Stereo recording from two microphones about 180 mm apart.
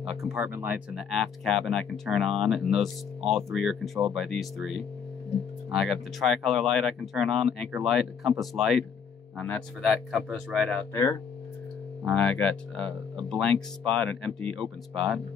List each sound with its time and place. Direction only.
0.2 s speech: 5° right (ahead or behind)
10.9 s speech: 15° left (ahead or behind)
12.0 s speech: 5° left (ahead or behind)
14.4 s speech: 30° right (ahead or behind)